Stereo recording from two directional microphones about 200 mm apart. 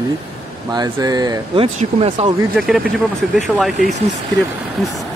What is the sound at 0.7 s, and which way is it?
Speech, 20° right (ahead or behind).